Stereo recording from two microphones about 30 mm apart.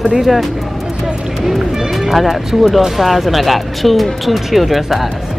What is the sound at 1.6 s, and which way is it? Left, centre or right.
Speech, centre.